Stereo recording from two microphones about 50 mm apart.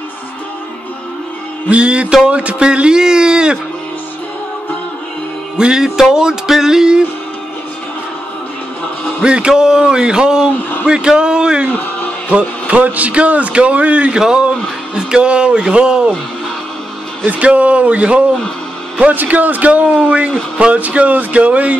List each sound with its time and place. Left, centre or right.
1.7 s a man's voice: right
2.2 s music: right
5.6 s music: centre
9.2 s music: centre
12.3 s a man's voice: right
14.2 s music: centre
15.0 s a man's voice: centre
17.3 s a man's voice: right